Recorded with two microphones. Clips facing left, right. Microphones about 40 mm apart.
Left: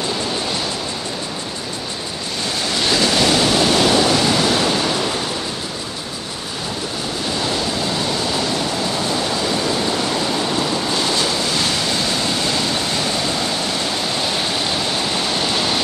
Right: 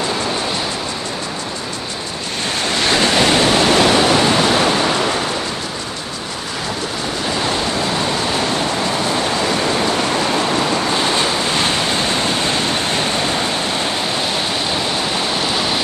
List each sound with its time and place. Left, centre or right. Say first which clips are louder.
2.6 s waves: right 2 dB; right
9.1 s waterfall: right 2 dB; right
11.0 s waves: right 2 dB; right